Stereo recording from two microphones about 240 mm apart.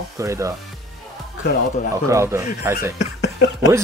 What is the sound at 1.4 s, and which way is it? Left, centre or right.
Mantra, left.